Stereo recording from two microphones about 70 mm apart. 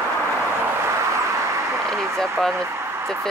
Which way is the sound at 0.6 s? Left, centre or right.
Right.